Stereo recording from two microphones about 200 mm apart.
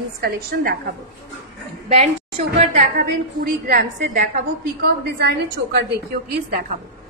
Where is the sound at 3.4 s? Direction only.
50° right (ahead or behind).